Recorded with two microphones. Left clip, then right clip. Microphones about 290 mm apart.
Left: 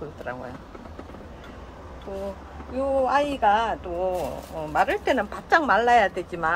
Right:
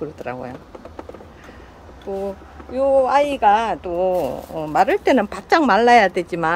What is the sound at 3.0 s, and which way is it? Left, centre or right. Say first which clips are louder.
Speech: right 6 dB; right.